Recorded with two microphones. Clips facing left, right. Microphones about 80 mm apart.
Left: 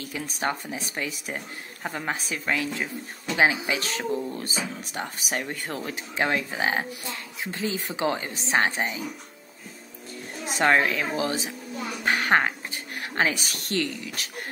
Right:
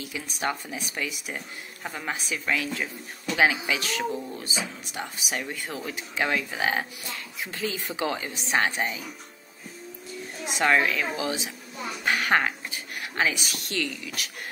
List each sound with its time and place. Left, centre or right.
0.0 s speech: left
10.4 s speech: left